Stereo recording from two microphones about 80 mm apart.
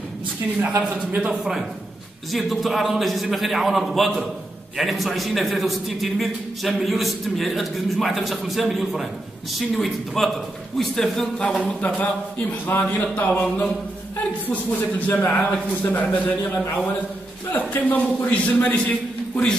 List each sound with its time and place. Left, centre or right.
0.9 s a man's voice: centre
12.7 s a man's voice: left